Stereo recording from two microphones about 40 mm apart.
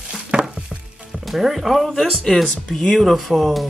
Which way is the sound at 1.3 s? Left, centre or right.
Centre.